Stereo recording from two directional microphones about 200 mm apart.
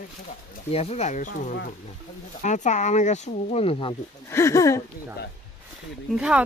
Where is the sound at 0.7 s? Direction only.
30° left (ahead or behind).